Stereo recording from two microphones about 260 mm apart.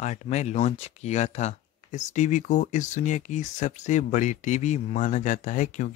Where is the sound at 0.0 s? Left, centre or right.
Left.